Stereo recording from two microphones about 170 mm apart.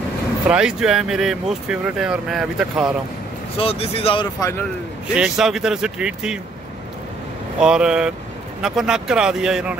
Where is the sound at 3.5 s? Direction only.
35° left (ahead or behind).